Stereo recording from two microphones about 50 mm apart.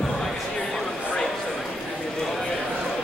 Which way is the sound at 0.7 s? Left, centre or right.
Centre.